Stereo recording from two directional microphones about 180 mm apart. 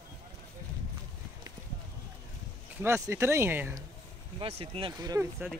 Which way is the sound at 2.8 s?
15° right (ahead or behind).